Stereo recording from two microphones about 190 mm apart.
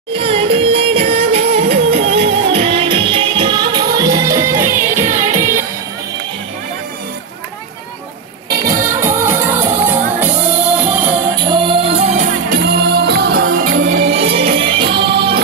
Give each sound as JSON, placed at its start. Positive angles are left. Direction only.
{"t": 0.2, "sound": "music", "side_deg": -30}
{"t": 8.5, "sound": "music", "side_deg": -20}
{"t": 11.4, "sound": "music", "side_deg": -25}
{"t": 14.0, "sound": "music", "side_deg": -30}